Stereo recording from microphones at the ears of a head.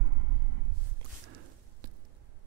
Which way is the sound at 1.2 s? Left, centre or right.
Right.